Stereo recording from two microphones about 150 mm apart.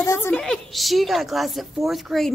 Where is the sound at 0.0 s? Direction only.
20° left (ahead or behind).